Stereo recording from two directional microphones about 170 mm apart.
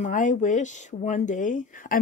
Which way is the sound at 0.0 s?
50° left (ahead or behind).